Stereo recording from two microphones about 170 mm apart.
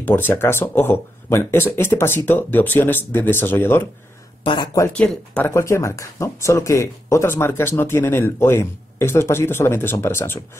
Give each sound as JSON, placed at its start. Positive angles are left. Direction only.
{"t": 0.0, "sound": "speech", "side_deg": 10}
{"t": 4.5, "sound": "speech", "side_deg": 25}
{"t": 4.8, "sound": "speech", "side_deg": 10}